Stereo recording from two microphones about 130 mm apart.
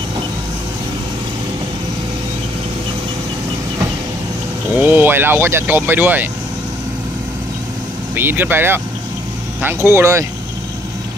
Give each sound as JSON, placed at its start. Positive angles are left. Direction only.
{"t": 4.7, "sound": "speech", "side_deg": -15}
{"t": 8.2, "sound": "speech", "side_deg": -15}